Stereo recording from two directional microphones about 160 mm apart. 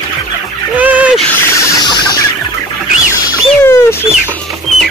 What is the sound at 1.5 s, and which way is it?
Chicken, 25° left (ahead or behind).